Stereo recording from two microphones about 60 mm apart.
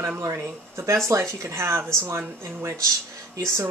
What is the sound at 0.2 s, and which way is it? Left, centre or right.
Speech, right.